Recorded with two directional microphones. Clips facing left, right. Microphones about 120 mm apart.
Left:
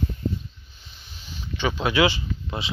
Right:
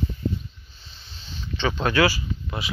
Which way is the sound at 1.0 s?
10° left (ahead or behind).